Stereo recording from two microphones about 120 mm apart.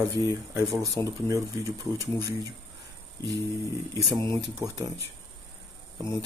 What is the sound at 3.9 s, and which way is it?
Speech, 40° right (ahead or behind).